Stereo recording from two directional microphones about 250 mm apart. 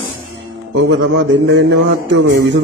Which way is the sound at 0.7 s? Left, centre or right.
Right.